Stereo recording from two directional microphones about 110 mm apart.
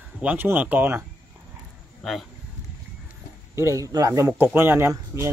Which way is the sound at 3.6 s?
30° right (ahead or behind).